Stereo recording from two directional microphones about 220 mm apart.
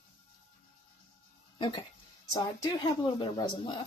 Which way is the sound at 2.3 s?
20° left (ahead or behind).